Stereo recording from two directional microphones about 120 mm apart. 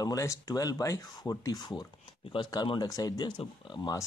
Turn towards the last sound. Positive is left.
turn(degrees=35)  # may be behind; listen again after turning